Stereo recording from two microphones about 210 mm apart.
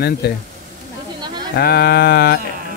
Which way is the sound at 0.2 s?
45° left (ahead or behind).